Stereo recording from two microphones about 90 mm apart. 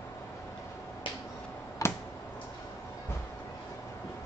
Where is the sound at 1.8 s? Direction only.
35° left (ahead or behind).